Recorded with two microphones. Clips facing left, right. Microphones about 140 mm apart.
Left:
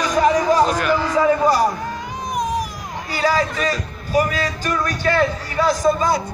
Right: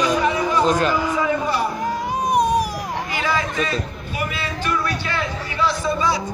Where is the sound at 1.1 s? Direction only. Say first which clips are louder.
Left 5 dB; 40° left (ahead or behind).